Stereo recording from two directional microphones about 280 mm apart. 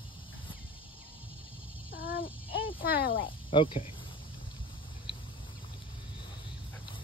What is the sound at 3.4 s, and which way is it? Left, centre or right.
Speech, centre.